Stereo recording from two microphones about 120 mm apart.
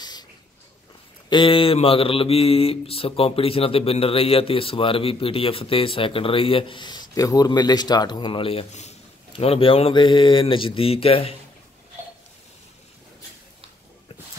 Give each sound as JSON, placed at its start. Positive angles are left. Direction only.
{"t": 1.3, "sound": "speech", "side_deg": 45}